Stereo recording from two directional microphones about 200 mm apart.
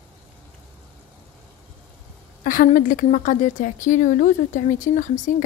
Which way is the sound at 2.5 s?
45° left (ahead or behind).